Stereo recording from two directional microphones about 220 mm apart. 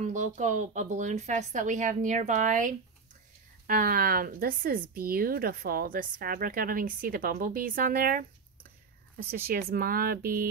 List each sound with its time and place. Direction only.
0.0 s speech: 35° right (ahead or behind)
9.5 s speech: 40° right (ahead or behind)